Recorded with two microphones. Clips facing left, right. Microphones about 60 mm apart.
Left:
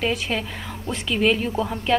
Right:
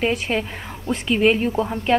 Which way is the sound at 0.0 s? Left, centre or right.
Right.